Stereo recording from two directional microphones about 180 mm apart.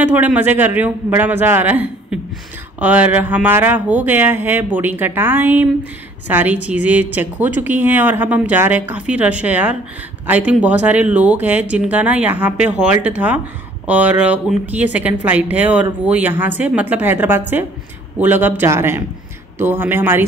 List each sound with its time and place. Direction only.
0.0 s a woman's voice: 10° right (ahead or behind)